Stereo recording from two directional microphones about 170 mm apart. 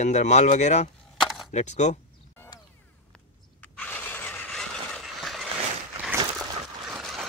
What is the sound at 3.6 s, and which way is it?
Mechanisms, 10° left (ahead or behind).